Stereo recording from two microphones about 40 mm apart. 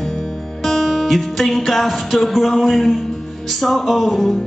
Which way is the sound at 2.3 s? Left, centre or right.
Centre.